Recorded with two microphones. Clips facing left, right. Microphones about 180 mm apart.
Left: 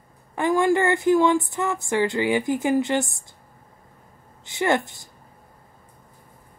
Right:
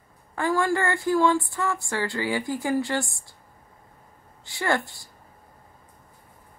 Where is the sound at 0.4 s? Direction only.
20° left (ahead or behind).